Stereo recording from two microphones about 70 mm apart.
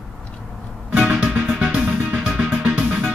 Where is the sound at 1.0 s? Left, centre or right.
Centre.